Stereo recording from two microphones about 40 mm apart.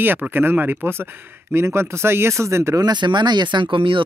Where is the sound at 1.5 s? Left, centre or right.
Right.